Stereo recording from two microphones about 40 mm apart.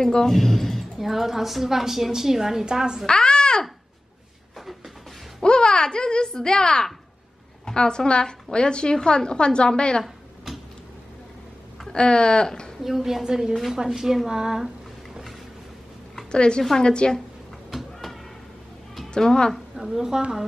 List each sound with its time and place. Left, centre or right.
0.0 s speech: centre
1.0 s a woman's voice: centre
3.1 s a child's voice: centre
4.6 s a sound: centre
5.4 s a woman's voice: left
10.0 s a sound: centre
11.8 s speech: centre
12.8 s a woman's voice: centre
16.3 s a woman's voice: left
19.0 s speech: centre
19.9 s a woman's voice: centre